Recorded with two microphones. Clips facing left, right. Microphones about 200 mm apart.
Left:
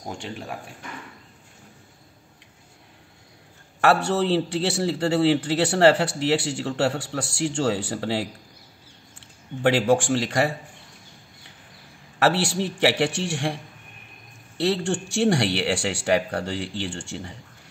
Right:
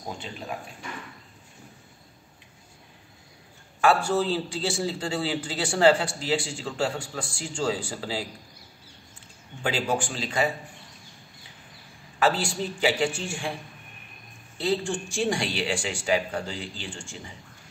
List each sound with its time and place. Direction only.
3.8 s a man's voice: 70° left (ahead or behind)
9.6 s a man's voice: 70° left (ahead or behind)
12.2 s a man's voice: 75° left (ahead or behind)
14.6 s a man's voice: 75° left (ahead or behind)